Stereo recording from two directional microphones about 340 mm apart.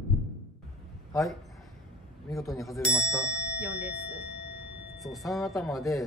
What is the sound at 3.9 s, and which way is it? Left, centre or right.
Speech, right.